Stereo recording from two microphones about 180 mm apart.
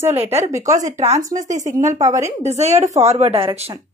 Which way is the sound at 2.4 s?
40° right (ahead or behind).